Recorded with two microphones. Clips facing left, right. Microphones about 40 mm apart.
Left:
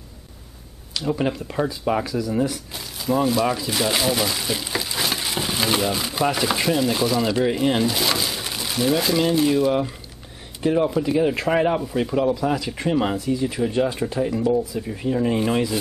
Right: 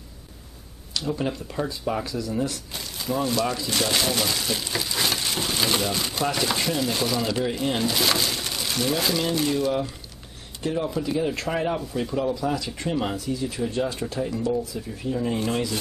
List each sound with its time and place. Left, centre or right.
0.9 s speech: centre
2.0 s speech: centre